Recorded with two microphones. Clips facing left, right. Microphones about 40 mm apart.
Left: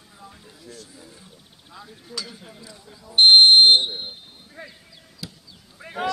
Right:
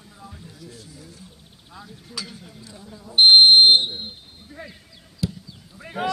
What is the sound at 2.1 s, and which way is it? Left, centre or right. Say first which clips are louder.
Speech: left 1 dB; centre.